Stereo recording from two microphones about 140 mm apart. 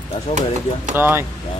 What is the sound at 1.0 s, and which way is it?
Speech, 15° right (ahead or behind).